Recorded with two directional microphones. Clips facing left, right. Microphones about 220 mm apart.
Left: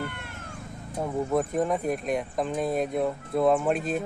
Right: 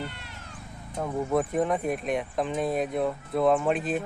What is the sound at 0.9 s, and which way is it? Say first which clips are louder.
Speech: even; centre (ahead or behind).